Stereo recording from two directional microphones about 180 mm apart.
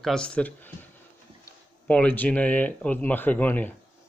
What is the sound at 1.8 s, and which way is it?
Speech, 5° left (ahead or behind).